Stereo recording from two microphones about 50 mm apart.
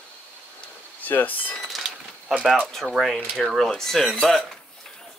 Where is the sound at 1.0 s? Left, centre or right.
Left.